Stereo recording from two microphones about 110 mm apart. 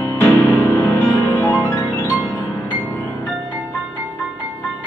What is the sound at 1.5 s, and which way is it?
Music, 30° left (ahead or behind).